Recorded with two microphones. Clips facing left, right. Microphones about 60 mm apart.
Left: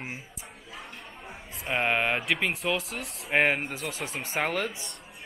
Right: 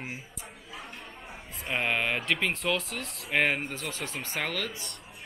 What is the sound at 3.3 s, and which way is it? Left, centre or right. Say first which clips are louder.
Speech: left 2 dB; centre.